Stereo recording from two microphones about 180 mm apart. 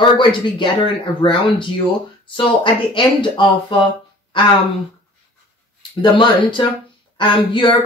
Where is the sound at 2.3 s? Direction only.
30° left (ahead or behind).